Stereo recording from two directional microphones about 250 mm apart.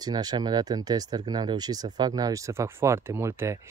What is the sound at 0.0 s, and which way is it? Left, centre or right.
Speech, centre.